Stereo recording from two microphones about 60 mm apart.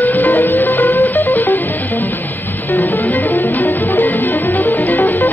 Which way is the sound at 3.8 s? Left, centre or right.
Left.